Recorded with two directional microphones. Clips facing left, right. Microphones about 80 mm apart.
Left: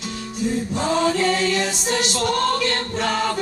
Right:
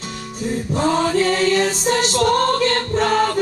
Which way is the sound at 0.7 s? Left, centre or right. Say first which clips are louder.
Right 4 dB; right.